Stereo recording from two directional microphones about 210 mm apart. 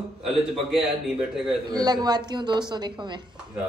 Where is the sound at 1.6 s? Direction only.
20° right (ahead or behind).